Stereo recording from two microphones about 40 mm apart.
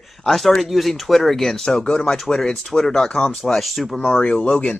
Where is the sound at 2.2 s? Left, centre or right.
Centre.